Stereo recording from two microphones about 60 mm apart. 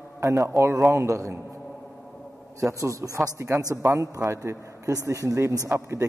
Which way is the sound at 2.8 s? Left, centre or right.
Right.